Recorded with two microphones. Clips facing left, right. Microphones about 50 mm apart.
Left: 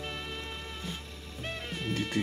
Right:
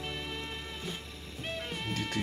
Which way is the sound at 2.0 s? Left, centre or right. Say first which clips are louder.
Left 4 dB; centre.